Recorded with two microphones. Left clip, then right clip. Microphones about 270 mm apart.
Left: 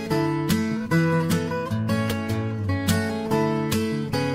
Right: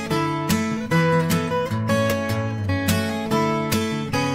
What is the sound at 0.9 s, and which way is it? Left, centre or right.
Music, centre.